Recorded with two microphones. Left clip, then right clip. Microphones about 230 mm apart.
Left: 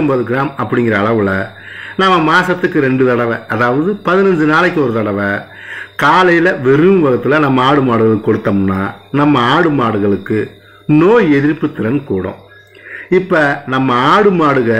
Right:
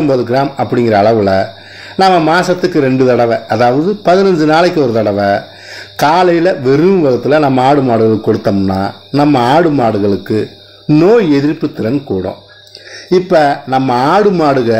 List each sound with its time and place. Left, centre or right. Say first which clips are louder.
0.3 s a man's voice: right 3 dB; centre